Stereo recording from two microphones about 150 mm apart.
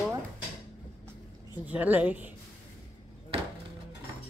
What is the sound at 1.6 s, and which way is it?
Speech, 10° right (ahead or behind).